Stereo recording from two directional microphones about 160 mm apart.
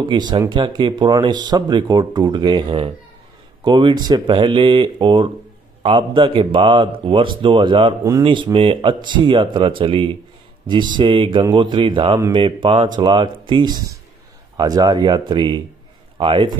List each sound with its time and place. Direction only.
0.0 s speech: 25° right (ahead or behind)